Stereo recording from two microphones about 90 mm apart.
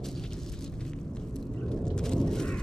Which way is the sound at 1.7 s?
10° left (ahead or behind).